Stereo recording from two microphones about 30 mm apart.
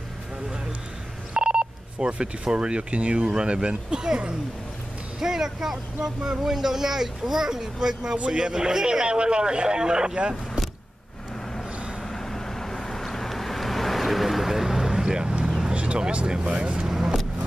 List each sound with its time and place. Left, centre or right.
1.3 s speech: right
3.3 s speech: right
5.2 s speech: centre
9.0 s speech: right
12.0 s vehicle: centre
15.0 s vehicle: right
15.7 s vehicle: right
16.3 s speech: right